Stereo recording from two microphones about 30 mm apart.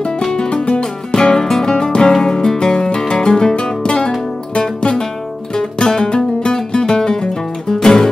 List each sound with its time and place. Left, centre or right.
0.3 s music: left
1.4 s music: centre